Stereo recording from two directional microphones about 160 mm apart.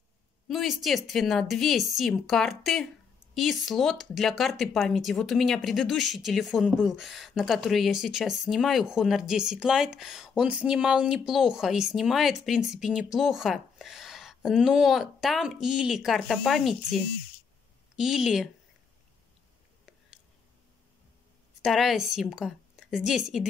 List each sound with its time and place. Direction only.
0.5 s speech: centre (ahead or behind)
17.9 s speech: 5° right (ahead or behind)
21.6 s speech: centre (ahead or behind)